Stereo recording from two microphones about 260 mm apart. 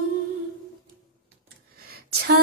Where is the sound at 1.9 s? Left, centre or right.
Right.